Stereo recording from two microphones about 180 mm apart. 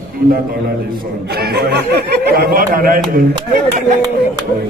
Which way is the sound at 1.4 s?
65° right (ahead or behind).